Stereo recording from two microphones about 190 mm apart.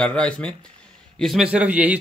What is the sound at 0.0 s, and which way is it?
Speech, 5° left (ahead or behind).